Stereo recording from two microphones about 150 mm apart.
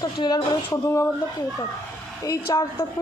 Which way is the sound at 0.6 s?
15° left (ahead or behind).